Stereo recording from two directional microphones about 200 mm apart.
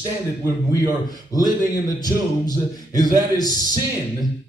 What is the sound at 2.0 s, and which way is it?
A man's voice, 20° left (ahead or behind).